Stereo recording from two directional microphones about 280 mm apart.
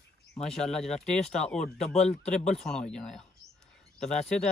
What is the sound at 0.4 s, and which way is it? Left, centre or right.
Speech, centre.